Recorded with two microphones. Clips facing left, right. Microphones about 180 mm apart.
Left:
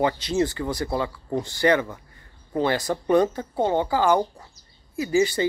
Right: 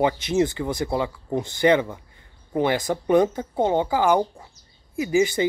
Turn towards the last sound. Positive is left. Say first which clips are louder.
# right 1 dB
turn(degrees=-15)  # may be behind; listen again after turning